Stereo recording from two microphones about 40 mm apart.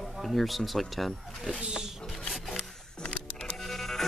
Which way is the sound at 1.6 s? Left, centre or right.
Centre.